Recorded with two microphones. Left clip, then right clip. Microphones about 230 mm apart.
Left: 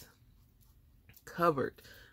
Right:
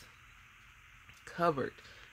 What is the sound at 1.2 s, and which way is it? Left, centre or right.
Speech, centre.